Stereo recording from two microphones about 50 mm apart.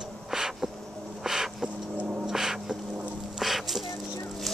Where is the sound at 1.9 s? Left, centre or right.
Right.